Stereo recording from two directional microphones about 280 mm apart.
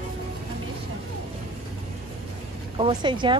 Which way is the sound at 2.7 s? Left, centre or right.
Centre.